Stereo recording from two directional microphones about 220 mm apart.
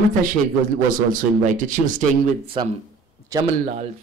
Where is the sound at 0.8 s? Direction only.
35° right (ahead or behind).